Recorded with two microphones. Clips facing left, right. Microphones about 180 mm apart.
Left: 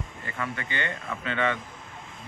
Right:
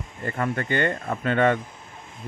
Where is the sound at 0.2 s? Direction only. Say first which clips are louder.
Right 8 dB; 45° right (ahead or behind).